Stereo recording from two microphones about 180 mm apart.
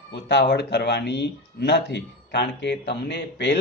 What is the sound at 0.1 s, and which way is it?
Speech, 70° left (ahead or behind).